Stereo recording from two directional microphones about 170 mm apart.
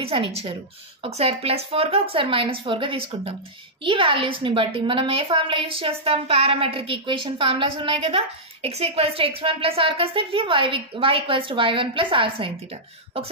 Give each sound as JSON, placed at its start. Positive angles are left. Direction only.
{"t": 0.0, "sound": "a woman's voice", "side_deg": -30}